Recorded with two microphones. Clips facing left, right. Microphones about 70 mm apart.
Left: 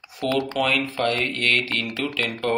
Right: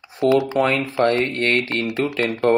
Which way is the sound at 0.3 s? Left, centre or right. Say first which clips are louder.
Right 6 dB; centre.